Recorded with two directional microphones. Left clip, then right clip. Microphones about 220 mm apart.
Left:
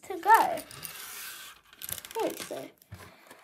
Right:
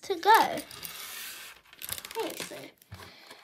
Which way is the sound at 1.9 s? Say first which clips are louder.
Left 2 dB; centre (ahead or behind).